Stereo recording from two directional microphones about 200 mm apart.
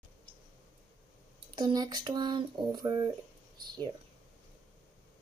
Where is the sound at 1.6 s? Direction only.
20° right (ahead or behind).